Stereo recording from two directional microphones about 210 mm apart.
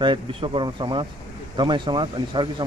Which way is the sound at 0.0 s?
25° right (ahead or behind).